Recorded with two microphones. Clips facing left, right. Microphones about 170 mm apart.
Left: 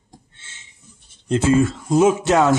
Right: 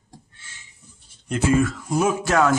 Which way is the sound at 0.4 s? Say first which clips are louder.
Even; 20° left (ahead or behind).